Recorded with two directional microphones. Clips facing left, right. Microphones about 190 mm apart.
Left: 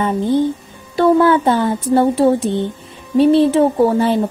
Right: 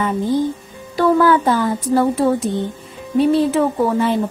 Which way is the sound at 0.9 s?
25° left (ahead or behind).